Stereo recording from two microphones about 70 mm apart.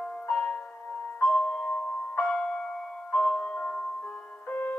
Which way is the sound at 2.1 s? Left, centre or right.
Centre.